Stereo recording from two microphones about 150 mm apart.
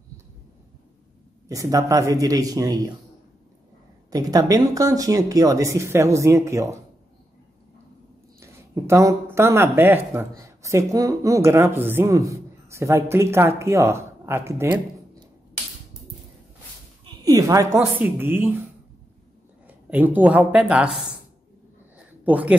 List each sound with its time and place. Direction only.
1.5 s speech: 20° right (ahead or behind)
4.1 s speech: 25° right (ahead or behind)
8.4 s speech: 20° right (ahead or behind)
17.0 s a sound: 25° right (ahead or behind)
17.9 s speech: 15° right (ahead or behind)
19.9 s speech: 10° right (ahead or behind)
21.9 s a sound: 10° right (ahead or behind)